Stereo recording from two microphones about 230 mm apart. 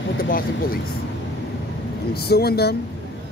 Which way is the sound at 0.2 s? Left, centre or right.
Left.